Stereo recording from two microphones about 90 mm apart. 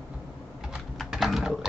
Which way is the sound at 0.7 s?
5° right (ahead or behind).